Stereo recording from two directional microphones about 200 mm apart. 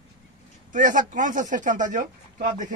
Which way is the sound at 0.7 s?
40° right (ahead or behind).